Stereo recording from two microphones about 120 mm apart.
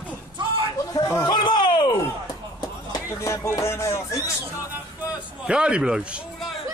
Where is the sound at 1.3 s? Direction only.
40° left (ahead or behind).